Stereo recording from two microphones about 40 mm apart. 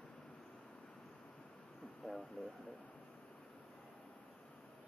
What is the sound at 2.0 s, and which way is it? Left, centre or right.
Speech, centre.